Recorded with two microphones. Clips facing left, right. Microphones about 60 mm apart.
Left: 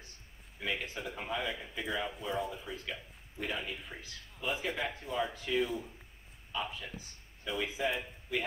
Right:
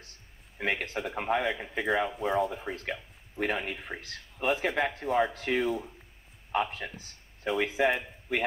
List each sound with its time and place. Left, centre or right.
0.6 s speech: right